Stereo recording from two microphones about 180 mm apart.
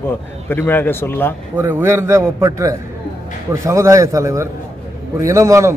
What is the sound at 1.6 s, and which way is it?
A man's voice, 10° right (ahead or behind).